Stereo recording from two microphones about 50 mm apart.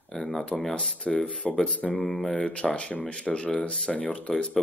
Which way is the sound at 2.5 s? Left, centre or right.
Left.